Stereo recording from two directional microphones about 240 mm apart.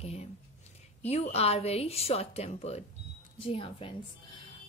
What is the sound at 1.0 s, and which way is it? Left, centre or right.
Speech, left.